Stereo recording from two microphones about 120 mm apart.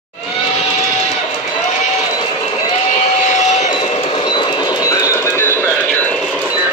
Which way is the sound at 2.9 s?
70° left (ahead or behind).